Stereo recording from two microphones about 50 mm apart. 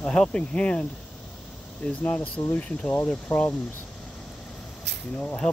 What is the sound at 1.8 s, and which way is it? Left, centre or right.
Speech, left.